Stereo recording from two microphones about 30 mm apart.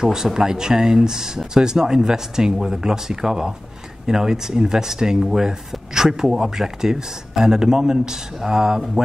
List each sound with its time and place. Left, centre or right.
0.0 s speech: centre